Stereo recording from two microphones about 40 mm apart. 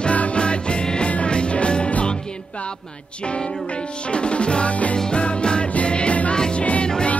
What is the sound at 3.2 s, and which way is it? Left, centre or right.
Music, left.